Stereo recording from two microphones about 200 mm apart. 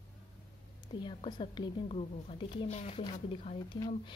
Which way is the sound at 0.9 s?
25° left (ahead or behind).